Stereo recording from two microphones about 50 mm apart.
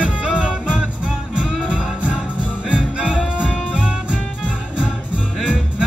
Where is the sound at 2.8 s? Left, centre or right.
Centre.